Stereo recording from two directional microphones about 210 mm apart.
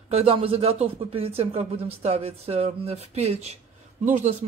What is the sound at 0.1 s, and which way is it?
Speech, 30° right (ahead or behind).